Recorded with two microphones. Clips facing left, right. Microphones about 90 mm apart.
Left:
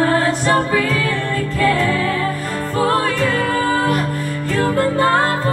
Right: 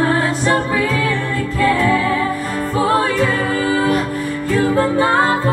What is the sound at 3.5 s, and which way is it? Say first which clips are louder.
Music: even; 45° left (ahead or behind).